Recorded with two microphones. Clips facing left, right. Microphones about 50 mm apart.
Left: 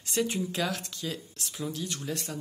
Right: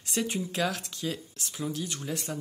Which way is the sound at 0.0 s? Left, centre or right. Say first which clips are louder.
Left 2 dB; centre.